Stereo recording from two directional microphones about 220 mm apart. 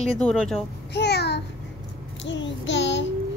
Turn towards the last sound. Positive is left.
turn(degrees=55)  # may be behind; listen again after turning